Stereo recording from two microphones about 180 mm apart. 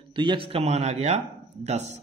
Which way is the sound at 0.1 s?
25° right (ahead or behind).